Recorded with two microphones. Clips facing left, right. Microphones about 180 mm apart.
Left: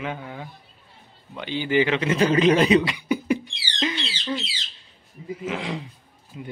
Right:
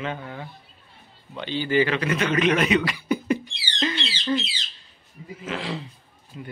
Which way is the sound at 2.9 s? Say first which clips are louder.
Even; 10° left (ahead or behind).